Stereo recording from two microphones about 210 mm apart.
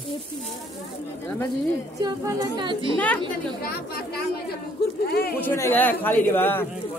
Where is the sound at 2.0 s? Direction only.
20° right (ahead or behind).